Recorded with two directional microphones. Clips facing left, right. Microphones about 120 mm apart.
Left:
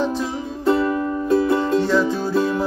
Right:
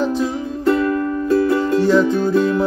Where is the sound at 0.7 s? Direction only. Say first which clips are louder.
Right 2 dB; 15° left (ahead or behind).